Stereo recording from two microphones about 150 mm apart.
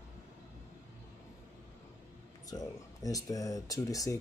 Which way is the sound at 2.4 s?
25° left (ahead or behind).